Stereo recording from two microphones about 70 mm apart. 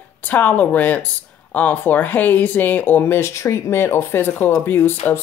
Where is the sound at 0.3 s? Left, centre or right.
Left.